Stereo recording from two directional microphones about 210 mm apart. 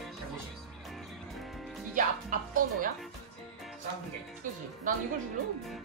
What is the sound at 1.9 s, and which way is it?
Music, 40° right (ahead or behind).